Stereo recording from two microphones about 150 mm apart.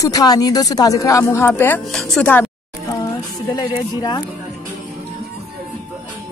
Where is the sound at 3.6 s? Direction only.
25° left (ahead or behind).